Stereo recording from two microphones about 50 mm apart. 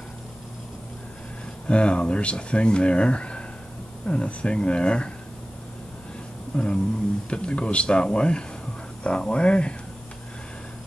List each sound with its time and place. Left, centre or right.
1.7 s speech: left
6.5 s speech: centre